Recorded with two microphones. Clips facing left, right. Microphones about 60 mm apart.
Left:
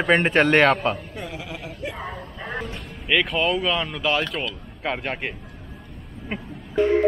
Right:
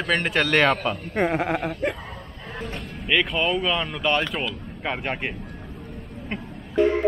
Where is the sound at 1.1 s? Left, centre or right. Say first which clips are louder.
Right 11 dB; right.